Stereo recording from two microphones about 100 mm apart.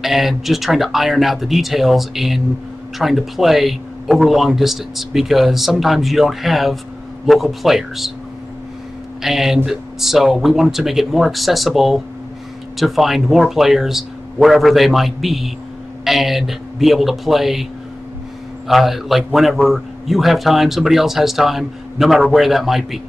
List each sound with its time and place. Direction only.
0.0 s a man's voice: centre (ahead or behind)
9.2 s a man's voice: 5° right (ahead or behind)
18.7 s a man's voice: centre (ahead or behind)